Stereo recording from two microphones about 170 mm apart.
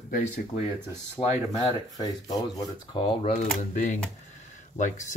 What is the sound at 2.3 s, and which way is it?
Speech, 25° left (ahead or behind).